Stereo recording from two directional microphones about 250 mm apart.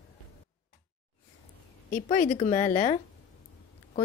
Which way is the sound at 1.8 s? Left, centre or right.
Left.